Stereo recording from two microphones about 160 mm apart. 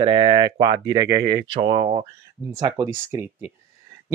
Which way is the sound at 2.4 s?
20° right (ahead or behind).